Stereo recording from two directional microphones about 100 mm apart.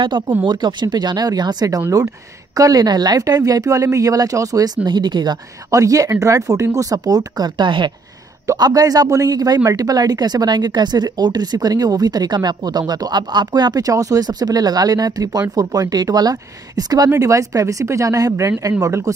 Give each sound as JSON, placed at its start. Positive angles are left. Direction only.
{"t": 0.2, "sound": "speech", "side_deg": -50}
{"t": 4.8, "sound": "speech", "side_deg": -45}